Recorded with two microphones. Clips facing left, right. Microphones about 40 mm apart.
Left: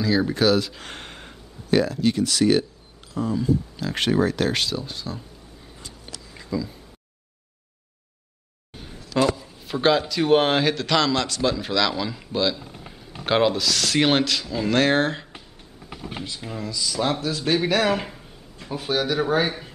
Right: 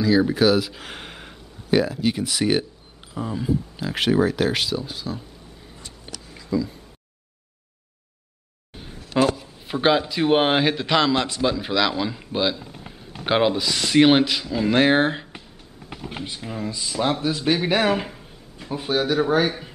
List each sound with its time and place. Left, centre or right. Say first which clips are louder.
0.0 s speech: right 3 dB; centre
6.5 s speech: right 4 dB; centre
9.7 s a man's voice: right 1 dB; centre
12.5 s a sound: right 1 dB; centre
13.2 s speech: even; centre
15.9 s a sound: right 1 dB; centre
16.5 s a man's voice: even; right
18.0 s a sound: right 1 dB; centre
19.1 s speech: right 2 dB; centre